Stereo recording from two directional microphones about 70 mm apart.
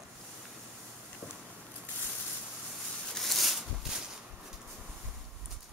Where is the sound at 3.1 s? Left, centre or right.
Centre.